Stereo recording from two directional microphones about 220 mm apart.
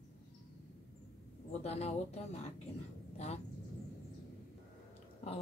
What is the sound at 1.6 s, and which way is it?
Speech, 30° left (ahead or behind).